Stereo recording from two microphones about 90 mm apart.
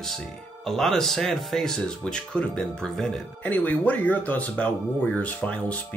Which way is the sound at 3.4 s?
20° left (ahead or behind).